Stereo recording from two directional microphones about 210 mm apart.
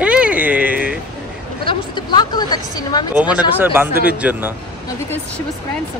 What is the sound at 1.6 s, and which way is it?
Speech, 25° left (ahead or behind).